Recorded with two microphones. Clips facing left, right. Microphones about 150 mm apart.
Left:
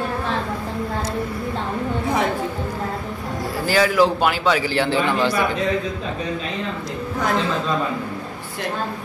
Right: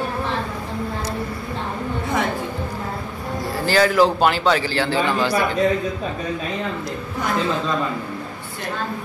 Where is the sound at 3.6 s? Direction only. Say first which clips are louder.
Right 1 dB; 5° left (ahead or behind).